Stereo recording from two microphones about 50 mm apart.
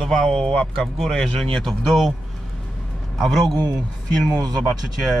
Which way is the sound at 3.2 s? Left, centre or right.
Centre.